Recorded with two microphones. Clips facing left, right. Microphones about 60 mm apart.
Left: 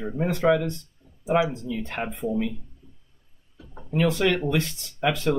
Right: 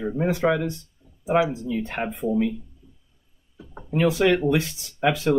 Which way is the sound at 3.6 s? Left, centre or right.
Right.